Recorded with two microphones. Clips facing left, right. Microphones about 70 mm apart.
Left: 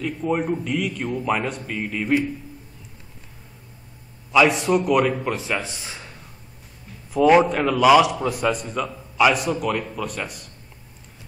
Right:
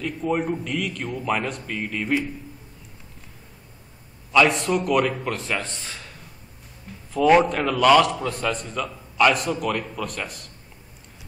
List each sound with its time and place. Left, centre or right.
0.0 s a man's voice: centre
4.3 s a man's voice: centre
7.1 s a man's voice: centre